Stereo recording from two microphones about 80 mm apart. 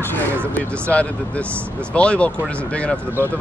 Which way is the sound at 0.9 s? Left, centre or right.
Centre.